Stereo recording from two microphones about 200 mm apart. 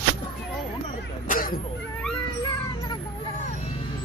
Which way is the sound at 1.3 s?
45° left (ahead or behind).